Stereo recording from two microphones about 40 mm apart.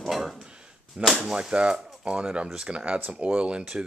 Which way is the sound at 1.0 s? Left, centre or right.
Right.